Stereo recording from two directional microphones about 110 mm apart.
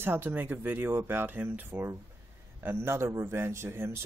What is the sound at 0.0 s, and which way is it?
Speech, 20° right (ahead or behind).